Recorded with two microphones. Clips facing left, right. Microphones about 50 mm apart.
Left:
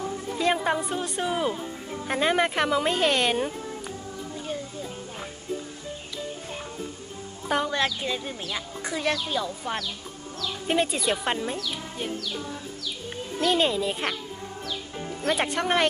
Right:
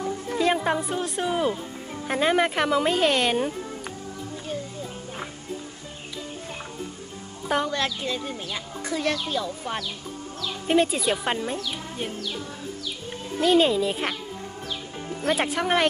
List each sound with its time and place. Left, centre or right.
0.4 s speech: centre
7.4 s a child's voice: centre
7.7 s speech: centre
13.4 s speech: centre
15.1 s speech: centre